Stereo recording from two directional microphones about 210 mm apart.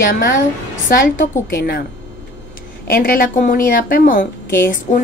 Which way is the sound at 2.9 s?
45° left (ahead or behind).